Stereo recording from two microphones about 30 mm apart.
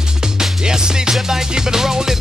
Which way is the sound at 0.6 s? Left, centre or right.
Right.